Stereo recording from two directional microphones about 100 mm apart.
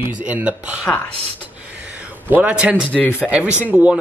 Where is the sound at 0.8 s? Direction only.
15° left (ahead or behind).